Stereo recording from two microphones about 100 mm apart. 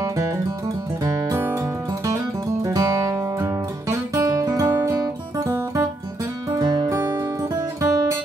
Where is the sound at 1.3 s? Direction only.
30° right (ahead or behind).